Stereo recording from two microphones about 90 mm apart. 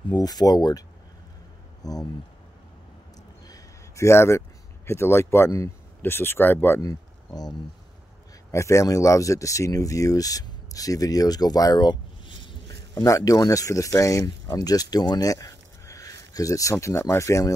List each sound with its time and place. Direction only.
0.1 s speech: 45° left (ahead or behind)
3.4 s a sound: 40° left (ahead or behind)
4.8 s speech: 30° left (ahead or behind)
6.8 s speech: 45° left (ahead or behind)
8.5 s speech: 35° left (ahead or behind); by 12.0 s 50° left (ahead or behind)
13.0 s speech: 40° left (ahead or behind)